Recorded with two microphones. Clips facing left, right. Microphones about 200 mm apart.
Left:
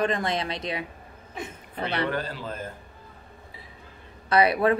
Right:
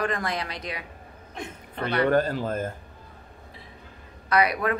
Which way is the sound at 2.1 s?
45° right (ahead or behind).